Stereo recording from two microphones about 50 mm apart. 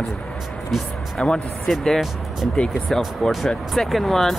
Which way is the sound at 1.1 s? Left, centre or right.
Centre.